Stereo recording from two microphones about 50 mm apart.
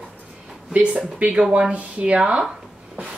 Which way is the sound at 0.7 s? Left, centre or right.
Right.